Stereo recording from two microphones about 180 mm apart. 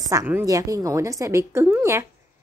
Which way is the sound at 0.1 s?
15° right (ahead or behind).